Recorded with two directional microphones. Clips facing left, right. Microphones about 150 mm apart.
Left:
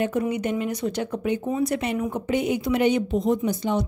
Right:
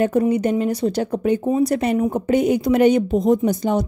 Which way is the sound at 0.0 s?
35° right (ahead or behind).